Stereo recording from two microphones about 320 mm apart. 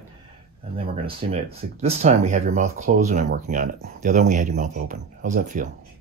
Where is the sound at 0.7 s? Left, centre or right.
Centre.